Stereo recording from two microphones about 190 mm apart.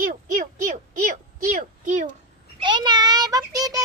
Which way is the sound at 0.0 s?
45° right (ahead or behind).